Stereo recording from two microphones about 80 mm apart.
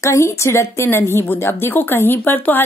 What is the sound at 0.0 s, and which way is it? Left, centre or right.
A woman's voice, left.